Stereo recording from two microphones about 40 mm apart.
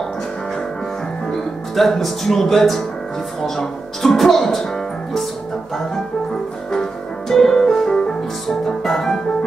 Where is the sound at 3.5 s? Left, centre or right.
Centre.